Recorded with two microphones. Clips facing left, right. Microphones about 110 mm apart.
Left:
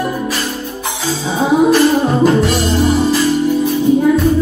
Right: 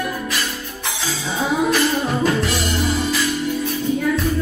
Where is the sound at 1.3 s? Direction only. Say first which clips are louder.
Left 8 dB; 25° left (ahead or behind).